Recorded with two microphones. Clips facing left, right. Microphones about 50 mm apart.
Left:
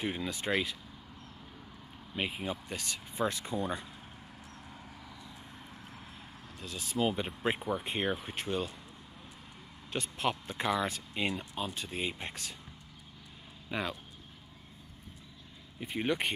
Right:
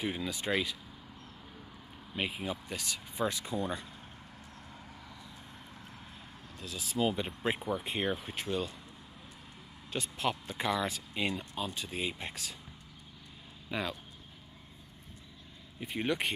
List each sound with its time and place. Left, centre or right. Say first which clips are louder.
0.0 s speech: even; centre
2.1 s speech: even; centre
6.6 s speech: even; centre
9.9 s speech: left 1 dB; centre
13.7 s speech: even; centre
15.8 s speech: left 1 dB; centre